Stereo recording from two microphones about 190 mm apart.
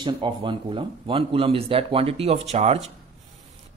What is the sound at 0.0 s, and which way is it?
Speech, 25° right (ahead or behind).